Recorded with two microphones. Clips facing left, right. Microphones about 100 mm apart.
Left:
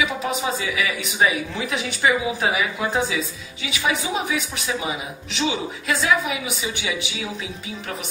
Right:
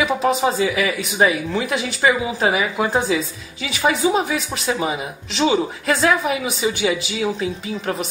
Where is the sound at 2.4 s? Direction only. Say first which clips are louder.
Right 7 dB; 45° right (ahead or behind).